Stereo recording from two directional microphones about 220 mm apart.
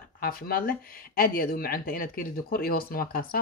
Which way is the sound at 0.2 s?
40° left (ahead or behind).